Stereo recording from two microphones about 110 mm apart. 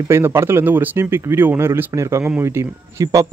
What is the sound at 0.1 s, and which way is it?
Speech, 25° right (ahead or behind).